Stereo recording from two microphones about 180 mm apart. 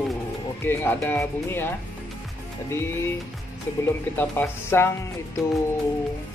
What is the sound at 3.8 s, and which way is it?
Speech, 10° left (ahead or behind).